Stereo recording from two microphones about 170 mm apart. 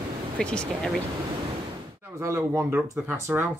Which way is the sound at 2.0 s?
15° right (ahead or behind).